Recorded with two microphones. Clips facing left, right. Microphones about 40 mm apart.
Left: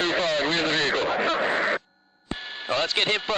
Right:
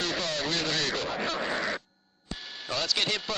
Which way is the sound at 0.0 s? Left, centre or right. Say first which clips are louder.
Left 7 dB; left.